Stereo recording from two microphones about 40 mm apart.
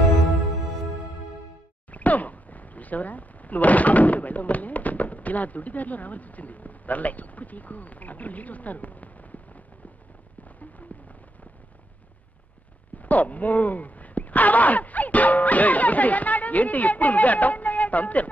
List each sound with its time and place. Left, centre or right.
1.9 s speech: left
10.6 s a sound: left
13.0 s speech: left